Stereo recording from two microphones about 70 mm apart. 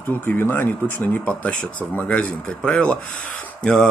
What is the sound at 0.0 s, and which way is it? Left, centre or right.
Speech, left.